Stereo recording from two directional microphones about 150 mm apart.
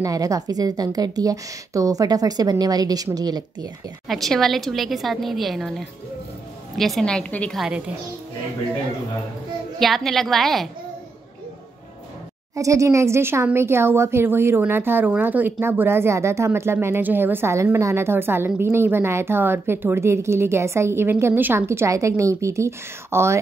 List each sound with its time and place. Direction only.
0.0 s a woman's voice: 25° right (ahead or behind)
4.1 s a woman's voice: centre (ahead or behind)
9.8 s a woman's voice: centre (ahead or behind)
12.5 s speech: 20° right (ahead or behind)